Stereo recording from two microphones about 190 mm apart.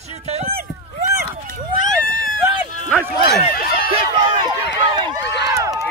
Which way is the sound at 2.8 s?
Centre (ahead or behind).